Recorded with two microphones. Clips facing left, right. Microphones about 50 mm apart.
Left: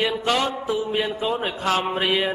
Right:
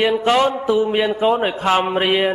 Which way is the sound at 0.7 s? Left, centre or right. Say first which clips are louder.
Right 7 dB; right.